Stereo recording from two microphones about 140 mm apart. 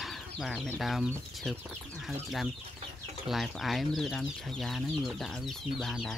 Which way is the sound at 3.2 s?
Centre (ahead or behind).